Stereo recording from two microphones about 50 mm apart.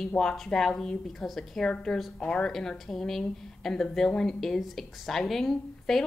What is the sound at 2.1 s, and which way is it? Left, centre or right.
Speech, centre.